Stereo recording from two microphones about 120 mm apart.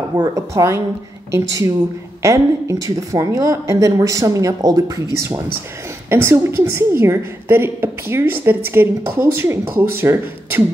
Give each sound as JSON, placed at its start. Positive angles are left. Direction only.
{"t": 0.1, "sound": "a woman's voice", "side_deg": -30}